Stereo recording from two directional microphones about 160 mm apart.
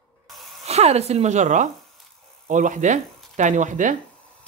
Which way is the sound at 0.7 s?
40° right (ahead or behind).